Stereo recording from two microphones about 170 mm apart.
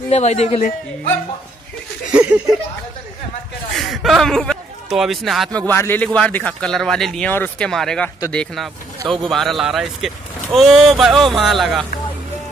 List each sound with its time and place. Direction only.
0.1 s a man's voice: 40° left (ahead or behind)
2.0 s a sound: 5° right (ahead or behind)
3.7 s a man's voice: centre (ahead or behind)
5.7 s speech: 10° left (ahead or behind)